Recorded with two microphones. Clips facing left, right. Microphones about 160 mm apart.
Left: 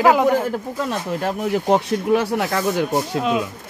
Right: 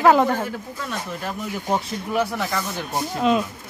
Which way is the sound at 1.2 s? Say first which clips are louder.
Left 8 dB; 75° left (ahead or behind).